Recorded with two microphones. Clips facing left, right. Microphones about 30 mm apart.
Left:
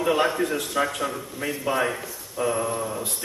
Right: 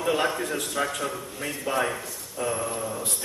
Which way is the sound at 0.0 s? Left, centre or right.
Centre.